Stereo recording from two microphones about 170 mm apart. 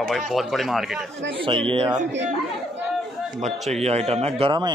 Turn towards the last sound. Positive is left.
turn(degrees=-30)  # may be behind; listen again after turning